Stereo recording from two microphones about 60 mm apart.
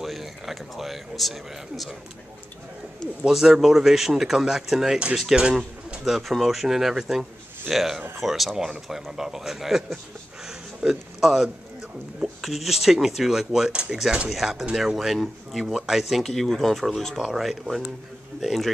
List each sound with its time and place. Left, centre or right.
0.0 s speech: centre
3.3 s speech: centre